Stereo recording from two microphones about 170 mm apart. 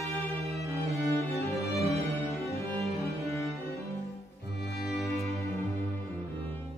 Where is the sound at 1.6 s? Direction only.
20° left (ahead or behind).